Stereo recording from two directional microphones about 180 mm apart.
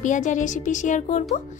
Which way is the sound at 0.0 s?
45° left (ahead or behind).